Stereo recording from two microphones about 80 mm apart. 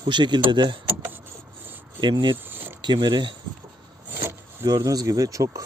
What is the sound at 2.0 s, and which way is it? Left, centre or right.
Speech, right.